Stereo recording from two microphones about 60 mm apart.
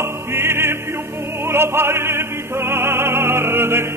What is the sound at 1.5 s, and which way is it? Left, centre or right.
Music, right.